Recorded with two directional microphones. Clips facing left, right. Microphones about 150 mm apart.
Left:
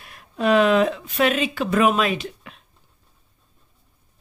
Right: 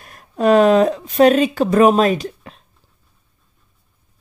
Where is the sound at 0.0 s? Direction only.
45° right (ahead or behind).